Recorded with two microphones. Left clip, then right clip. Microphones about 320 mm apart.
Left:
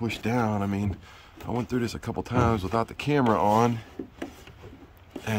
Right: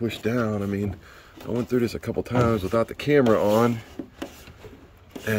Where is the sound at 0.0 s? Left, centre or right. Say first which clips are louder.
Right 2 dB; centre.